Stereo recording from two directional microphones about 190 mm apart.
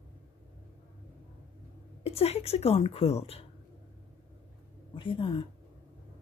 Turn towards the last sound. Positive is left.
turn(degrees=25)  # may be behind; listen again after turning